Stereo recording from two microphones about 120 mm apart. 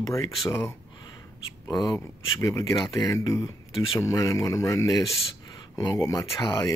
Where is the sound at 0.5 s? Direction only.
20° left (ahead or behind).